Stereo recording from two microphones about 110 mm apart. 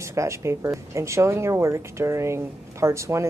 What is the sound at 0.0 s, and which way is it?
Speech, 25° right (ahead or behind).